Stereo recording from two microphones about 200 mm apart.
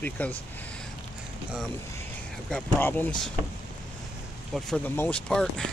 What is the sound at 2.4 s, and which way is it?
Speech, 5° left (ahead or behind).